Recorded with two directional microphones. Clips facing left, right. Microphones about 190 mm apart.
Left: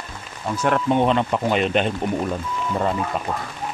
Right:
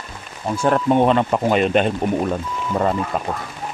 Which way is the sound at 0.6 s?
35° right (ahead or behind).